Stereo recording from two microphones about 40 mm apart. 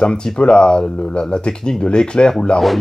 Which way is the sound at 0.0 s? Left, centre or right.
Centre.